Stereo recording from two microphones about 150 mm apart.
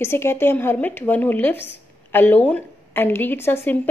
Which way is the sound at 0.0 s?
15° left (ahead or behind).